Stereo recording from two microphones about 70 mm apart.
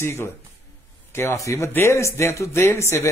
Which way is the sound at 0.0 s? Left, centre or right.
Left.